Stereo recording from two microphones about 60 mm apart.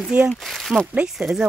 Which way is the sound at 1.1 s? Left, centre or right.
Centre.